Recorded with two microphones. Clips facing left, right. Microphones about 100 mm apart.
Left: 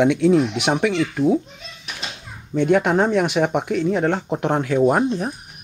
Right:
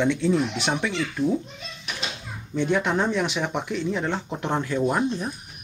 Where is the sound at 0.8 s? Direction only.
55° left (ahead or behind).